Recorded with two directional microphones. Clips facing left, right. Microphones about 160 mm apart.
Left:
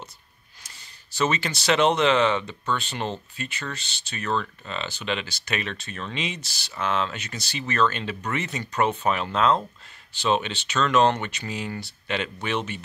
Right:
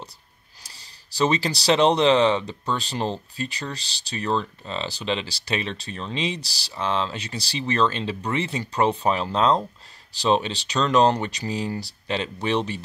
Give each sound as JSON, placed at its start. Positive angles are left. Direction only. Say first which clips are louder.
{"t": 0.7, "sound": "speech", "louder": "even", "side_deg": -35}